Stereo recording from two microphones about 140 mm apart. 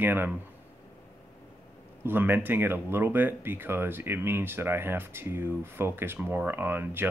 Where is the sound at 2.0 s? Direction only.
15° right (ahead or behind).